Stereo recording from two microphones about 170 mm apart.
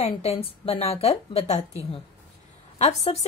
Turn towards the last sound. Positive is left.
turn(degrees=40)  # may be behind; listen again after turning